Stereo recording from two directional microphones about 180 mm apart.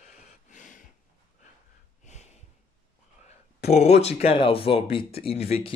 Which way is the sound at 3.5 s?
35° left (ahead or behind).